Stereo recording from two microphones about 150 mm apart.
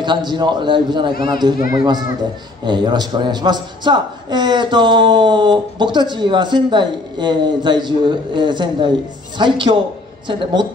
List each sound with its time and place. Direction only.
0.0 s a man's voice: 30° right (ahead or behind)